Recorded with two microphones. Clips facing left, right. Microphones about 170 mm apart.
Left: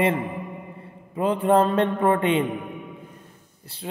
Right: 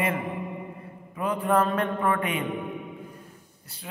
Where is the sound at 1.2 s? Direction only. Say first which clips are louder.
Left 5 dB; 30° left (ahead or behind).